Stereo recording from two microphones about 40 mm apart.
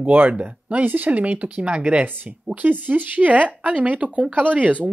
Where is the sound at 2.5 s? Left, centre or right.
Right.